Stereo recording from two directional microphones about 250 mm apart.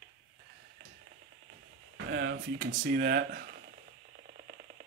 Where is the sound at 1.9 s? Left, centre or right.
Right.